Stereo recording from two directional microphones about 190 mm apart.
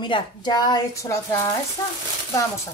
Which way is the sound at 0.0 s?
25° left (ahead or behind).